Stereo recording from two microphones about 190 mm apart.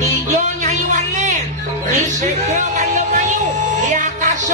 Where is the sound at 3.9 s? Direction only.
40° right (ahead or behind).